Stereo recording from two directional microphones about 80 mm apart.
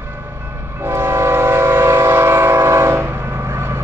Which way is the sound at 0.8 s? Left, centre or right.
Right.